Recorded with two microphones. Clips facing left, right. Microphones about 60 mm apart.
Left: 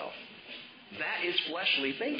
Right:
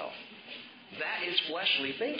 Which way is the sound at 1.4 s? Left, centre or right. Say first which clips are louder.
Even; centre.